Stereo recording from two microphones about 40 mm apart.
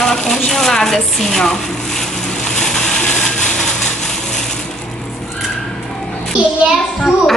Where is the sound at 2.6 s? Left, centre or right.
Centre.